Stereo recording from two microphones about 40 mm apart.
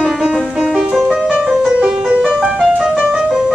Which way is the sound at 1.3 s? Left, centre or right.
Centre.